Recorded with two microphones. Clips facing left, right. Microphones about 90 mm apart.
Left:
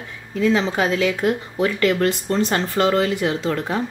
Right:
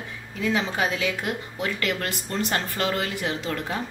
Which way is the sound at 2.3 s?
30° left (ahead or behind).